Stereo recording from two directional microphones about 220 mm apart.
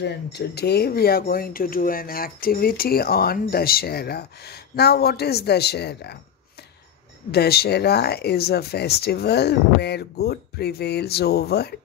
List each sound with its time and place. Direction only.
0.0 s speech: 50° left (ahead or behind)
7.2 s speech: 45° left (ahead or behind)